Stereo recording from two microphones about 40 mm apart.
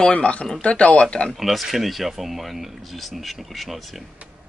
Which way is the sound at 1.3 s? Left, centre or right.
Centre.